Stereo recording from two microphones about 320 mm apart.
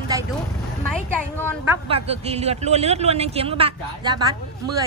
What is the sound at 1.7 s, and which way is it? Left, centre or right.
A woman's voice, centre.